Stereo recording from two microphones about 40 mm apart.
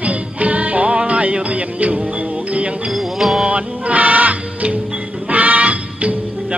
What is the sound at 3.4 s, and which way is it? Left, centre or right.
Music, right.